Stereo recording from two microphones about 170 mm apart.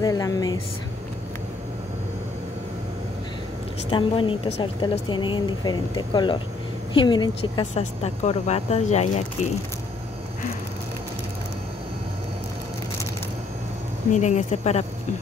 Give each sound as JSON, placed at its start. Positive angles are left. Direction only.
{"t": 0.0, "sound": "speech", "side_deg": 20}
{"t": 3.9, "sound": "speech", "side_deg": 30}
{"t": 7.7, "sound": "speech", "side_deg": 40}
{"t": 14.1, "sound": "speech", "side_deg": 45}